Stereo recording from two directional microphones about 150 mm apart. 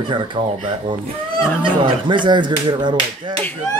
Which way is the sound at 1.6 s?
30° right (ahead or behind).